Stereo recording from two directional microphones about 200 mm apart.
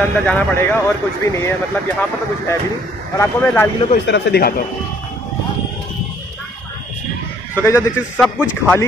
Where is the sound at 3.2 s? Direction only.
10° left (ahead or behind).